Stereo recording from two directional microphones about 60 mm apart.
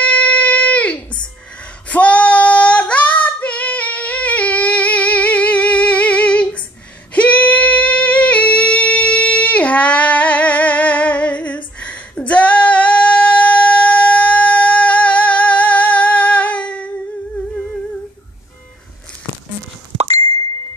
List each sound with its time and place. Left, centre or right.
0.0 s a sound: left
1.9 s female singing: left
7.2 s singing: left